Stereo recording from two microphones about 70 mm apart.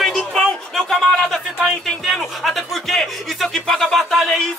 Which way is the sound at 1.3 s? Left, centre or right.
Centre.